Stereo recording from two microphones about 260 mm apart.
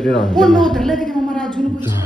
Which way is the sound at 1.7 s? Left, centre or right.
Centre.